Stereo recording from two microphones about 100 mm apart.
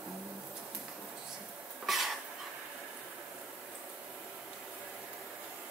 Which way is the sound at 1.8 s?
Centre (ahead or behind).